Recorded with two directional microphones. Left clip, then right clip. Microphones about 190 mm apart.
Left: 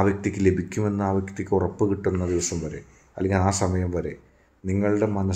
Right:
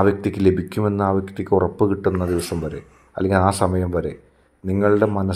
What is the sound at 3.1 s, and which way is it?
Speech, 20° right (ahead or behind).